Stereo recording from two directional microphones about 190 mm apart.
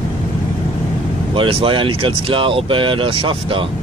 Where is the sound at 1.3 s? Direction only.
25° right (ahead or behind).